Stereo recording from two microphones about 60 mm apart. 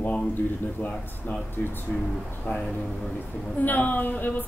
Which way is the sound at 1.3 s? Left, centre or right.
Left.